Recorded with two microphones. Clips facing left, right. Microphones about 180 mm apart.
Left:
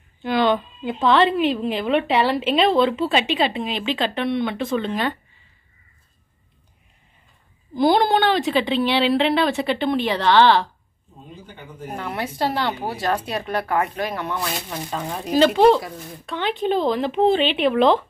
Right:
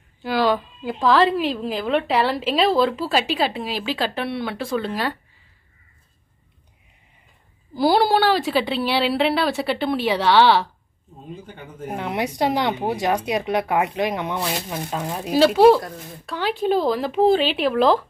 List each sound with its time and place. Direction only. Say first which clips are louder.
0.2 s a woman's voice: left 1 dB; 5° right (ahead or behind)
7.7 s a woman's voice: even; 5° right (ahead or behind)
11.9 s a woman's voice: right 3 dB; 20° right (ahead or behind); by 18.0 s centre (ahead or behind)